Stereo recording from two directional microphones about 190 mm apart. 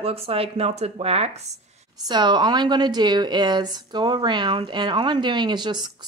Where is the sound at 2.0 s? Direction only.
25° right (ahead or behind).